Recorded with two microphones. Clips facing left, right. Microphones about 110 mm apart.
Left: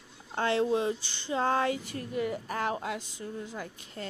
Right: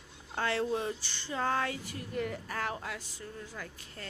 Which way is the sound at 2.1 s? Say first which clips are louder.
Left 4 dB; 5° left (ahead or behind).